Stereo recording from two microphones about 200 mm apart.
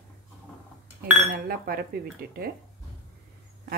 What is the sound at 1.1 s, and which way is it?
Speech, 45° right (ahead or behind).